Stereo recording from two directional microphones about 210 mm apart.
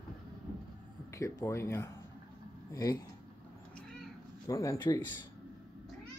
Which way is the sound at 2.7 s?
15° left (ahead or behind).